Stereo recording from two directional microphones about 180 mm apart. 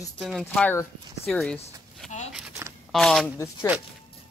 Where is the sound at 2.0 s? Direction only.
Centre (ahead or behind).